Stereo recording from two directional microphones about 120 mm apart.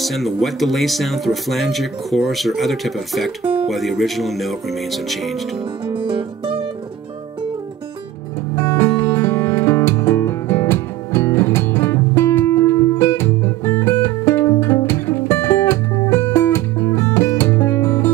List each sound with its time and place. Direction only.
0.0 s speech: centre (ahead or behind)
5.9 s music: 45° right (ahead or behind)
8.5 s music: 20° left (ahead or behind)